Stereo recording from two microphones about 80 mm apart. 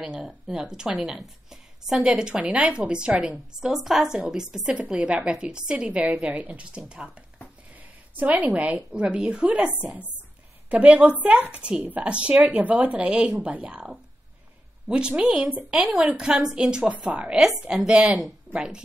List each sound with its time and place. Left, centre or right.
0.0 s a woman's voice: centre